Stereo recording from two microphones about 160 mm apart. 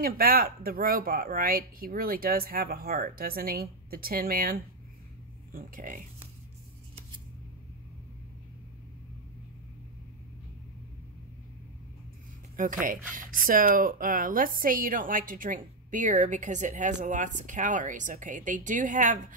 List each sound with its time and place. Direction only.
0.0 s speech: 65° right (ahead or behind)
12.5 s speech: 55° right (ahead or behind)